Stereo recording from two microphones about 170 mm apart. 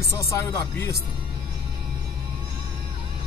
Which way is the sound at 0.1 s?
15° left (ahead or behind).